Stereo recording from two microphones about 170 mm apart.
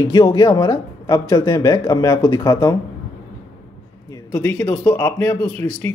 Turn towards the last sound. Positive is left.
turn(degrees=15)  # may be behind; listen again after turning